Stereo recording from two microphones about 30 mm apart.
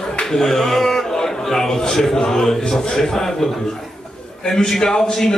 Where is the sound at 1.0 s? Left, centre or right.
Centre.